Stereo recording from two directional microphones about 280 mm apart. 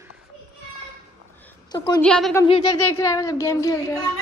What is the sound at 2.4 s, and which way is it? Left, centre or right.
Speech, centre.